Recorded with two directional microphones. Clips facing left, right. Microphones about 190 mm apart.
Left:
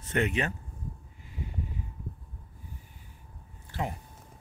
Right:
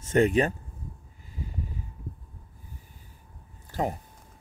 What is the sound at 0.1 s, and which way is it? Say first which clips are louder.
Speech: right 7 dB; 35° right (ahead or behind).